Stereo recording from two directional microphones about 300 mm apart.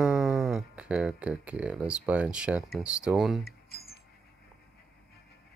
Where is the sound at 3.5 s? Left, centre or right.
Left.